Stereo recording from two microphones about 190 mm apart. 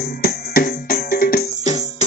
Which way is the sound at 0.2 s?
50° left (ahead or behind).